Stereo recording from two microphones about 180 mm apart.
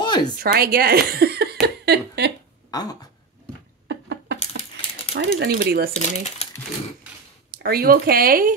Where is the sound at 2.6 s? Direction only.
20° left (ahead or behind).